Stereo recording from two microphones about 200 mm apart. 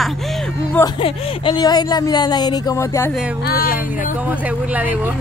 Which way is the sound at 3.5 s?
50° left (ahead or behind).